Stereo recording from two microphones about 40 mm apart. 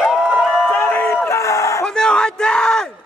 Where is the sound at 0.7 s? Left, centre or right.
Left.